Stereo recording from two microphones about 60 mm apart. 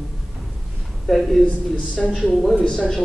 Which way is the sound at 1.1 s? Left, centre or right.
Centre.